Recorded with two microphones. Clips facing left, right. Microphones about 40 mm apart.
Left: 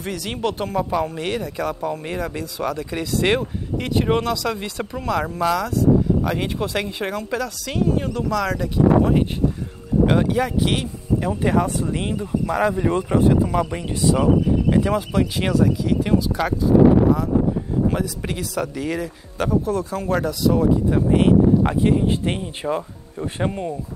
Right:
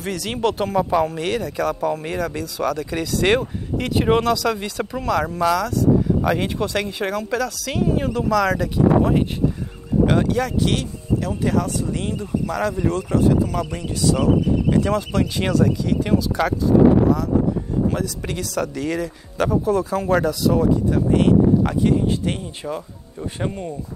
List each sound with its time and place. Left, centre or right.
0.0 s speech: centre
17.8 s speech: centre
20.9 s speech: centre